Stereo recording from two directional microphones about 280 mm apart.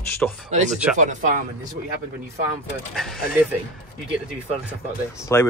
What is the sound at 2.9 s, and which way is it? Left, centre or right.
Speech, centre.